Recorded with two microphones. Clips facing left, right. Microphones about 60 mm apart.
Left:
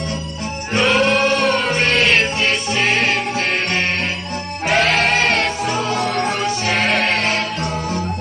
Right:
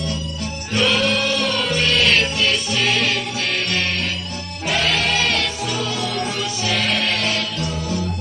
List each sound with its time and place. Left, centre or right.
0.7 s music: left